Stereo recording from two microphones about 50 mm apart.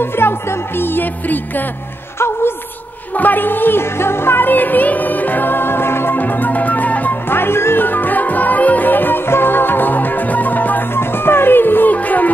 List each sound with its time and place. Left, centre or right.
0.0 s music: left
2.1 s music: left
3.2 s music: left
4.5 s music: left
6.1 s music: left
7.2 s music: left
7.8 s music: left
11.0 s music: left